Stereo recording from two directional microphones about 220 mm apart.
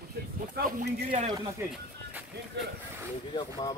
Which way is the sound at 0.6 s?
40° right (ahead or behind).